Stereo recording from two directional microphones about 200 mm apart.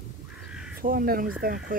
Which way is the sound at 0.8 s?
45° right (ahead or behind).